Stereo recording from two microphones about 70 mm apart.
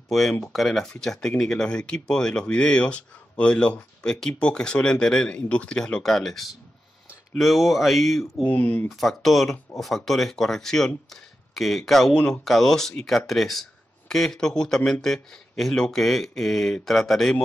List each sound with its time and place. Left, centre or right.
0.1 s speech: centre
8.5 s speech: centre
8.8 s speech: centre